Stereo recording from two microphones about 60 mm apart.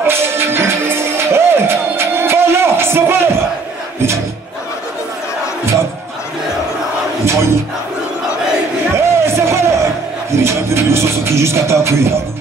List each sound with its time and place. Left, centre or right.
0.0 s music: right
7.2 s crowd: right
8.9 s music: right